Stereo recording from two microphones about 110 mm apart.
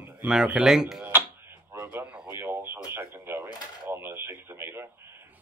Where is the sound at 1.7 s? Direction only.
20° right (ahead or behind).